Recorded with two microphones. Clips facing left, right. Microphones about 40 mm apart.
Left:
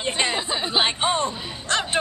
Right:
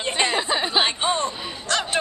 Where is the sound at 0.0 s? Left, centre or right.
Centre.